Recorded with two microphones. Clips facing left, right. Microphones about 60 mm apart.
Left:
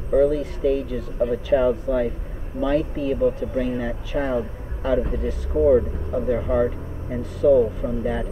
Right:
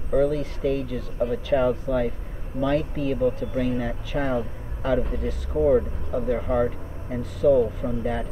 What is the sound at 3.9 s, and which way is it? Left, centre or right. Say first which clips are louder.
Speech: left 2 dB; centre.